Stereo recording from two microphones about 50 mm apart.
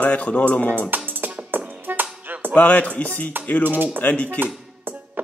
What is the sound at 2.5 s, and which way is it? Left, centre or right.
Speech, left.